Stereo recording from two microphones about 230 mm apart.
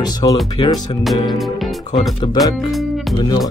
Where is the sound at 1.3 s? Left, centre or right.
Centre.